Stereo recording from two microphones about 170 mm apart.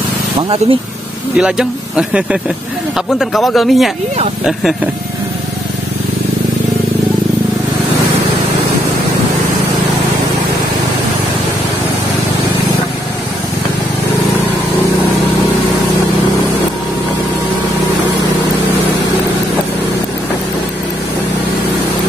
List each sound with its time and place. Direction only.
0.4 s speech: 30° right (ahead or behind)
1.3 s speech: 5° right (ahead or behind)